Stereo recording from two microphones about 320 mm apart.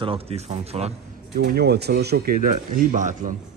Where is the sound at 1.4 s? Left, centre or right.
Right.